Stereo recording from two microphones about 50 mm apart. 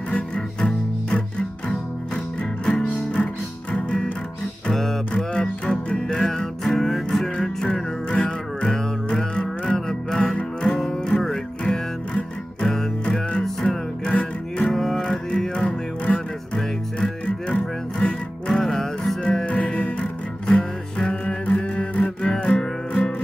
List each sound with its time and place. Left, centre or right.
0.6 s music: centre
2.6 s music: centre
4.7 s music: centre
5.3 s music: centre
6.1 s music: centre
18.5 s music: centre
19.4 s music: left; by 23.1 s centre